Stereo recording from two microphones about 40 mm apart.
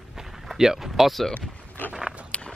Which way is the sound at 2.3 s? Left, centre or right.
Left.